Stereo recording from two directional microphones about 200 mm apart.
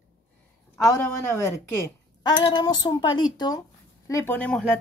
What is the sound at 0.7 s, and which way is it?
A woman's voice, 15° left (ahead or behind).